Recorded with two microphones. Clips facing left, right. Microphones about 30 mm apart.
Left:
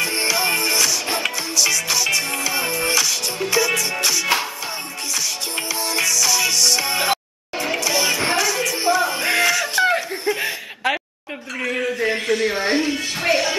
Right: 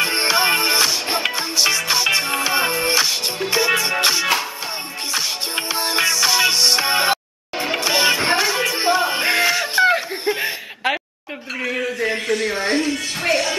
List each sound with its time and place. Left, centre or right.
0.0 s music: right
9.3 s music: centre
10.4 s chuckle: centre
11.6 s music: centre